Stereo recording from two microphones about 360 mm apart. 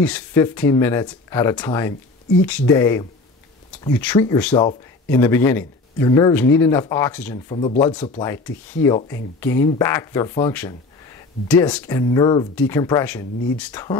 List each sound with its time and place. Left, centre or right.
0.0 s speech: centre
7.5 s speech: centre
7.8 s speech: centre